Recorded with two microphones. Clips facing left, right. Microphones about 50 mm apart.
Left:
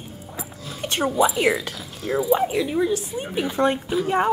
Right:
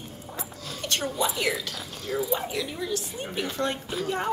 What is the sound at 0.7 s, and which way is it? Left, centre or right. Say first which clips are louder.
A woman's voice: left 7 dB; centre.